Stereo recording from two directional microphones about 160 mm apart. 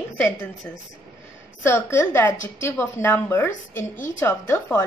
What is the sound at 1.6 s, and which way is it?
A woman's voice, 15° left (ahead or behind).